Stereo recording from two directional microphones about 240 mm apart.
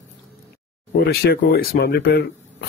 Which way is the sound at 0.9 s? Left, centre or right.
Left.